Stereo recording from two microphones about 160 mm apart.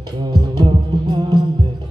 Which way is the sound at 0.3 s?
30° right (ahead or behind).